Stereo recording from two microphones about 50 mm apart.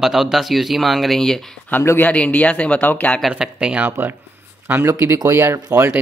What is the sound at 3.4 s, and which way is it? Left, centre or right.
Speech, centre.